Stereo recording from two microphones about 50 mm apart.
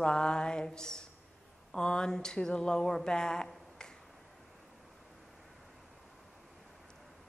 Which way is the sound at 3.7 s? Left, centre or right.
Centre.